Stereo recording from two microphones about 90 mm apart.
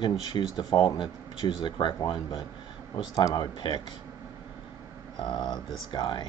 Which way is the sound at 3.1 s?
45° left (ahead or behind).